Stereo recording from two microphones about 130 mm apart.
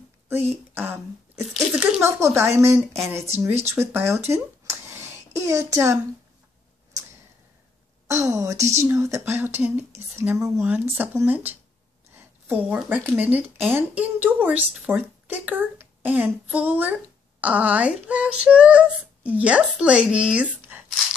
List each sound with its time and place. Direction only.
0.3 s speech: 15° right (ahead or behind)
8.1 s a child's voice: 25° right (ahead or behind)